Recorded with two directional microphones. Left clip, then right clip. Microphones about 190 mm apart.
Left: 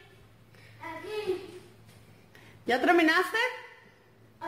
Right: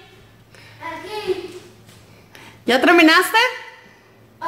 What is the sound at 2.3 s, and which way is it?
Speech, 20° right (ahead or behind).